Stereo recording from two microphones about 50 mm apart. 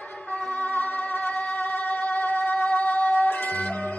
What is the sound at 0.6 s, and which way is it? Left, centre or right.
Music, left.